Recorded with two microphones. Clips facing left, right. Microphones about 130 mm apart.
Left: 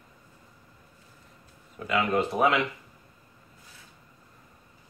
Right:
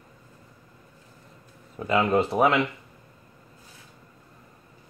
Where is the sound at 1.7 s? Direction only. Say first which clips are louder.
Right 4 dB; 30° right (ahead or behind).